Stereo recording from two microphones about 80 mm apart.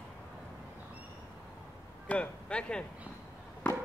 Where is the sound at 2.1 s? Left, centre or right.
Centre.